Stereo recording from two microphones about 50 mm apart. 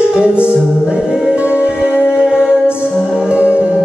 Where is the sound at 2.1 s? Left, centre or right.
Centre.